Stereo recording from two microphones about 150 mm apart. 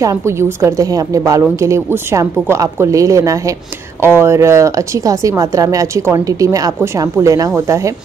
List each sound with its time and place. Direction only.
0.0 s speech: 20° right (ahead or behind)